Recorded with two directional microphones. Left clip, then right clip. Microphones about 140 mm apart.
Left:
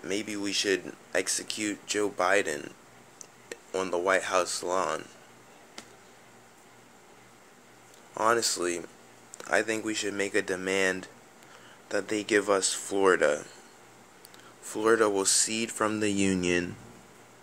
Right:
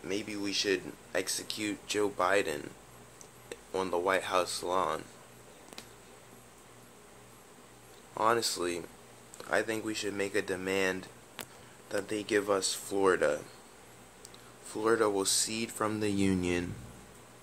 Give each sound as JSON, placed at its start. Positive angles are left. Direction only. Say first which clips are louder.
{"t": 0.0, "sound": "speech", "louder": "left 3 dB", "side_deg": 25}
{"t": 8.1, "sound": "speech", "louder": "left 3 dB", "side_deg": 15}
{"t": 14.7, "sound": "speech", "louder": "left 4 dB", "side_deg": 25}